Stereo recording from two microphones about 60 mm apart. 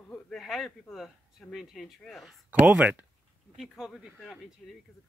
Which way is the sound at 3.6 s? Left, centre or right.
Centre.